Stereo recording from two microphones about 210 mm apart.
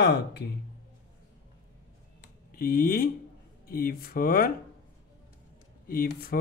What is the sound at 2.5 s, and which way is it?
Speech, 40° left (ahead or behind).